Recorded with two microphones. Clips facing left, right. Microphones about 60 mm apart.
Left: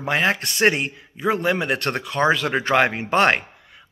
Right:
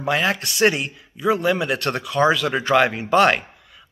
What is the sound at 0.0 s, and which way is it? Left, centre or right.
Speech, left.